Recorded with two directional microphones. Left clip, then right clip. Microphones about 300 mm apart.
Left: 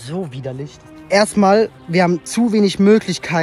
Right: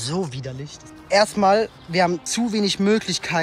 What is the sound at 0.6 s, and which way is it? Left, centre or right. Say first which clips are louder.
Speech: left 4 dB; left.